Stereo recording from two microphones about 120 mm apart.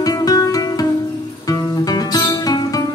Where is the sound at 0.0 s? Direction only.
30° left (ahead or behind).